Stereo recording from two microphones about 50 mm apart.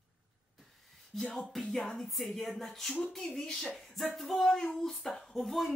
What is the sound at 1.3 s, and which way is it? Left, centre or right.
Speech, centre.